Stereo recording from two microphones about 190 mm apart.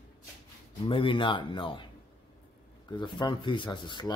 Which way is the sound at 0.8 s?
25° left (ahead or behind).